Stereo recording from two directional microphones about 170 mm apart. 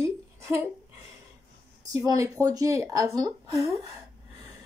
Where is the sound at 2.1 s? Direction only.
20° right (ahead or behind).